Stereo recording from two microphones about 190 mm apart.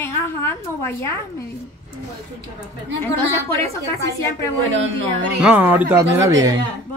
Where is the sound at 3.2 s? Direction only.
10° left (ahead or behind).